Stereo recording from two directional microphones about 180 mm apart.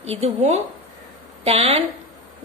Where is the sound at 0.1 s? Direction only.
35° right (ahead or behind).